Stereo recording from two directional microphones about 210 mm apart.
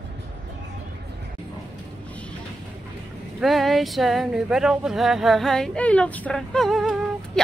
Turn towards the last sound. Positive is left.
turn(degrees=0)  # may be behind; listen again after turning